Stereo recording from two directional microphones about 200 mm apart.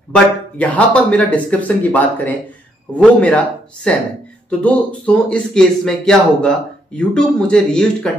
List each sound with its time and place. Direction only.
0.1 s speech: 5° left (ahead or behind)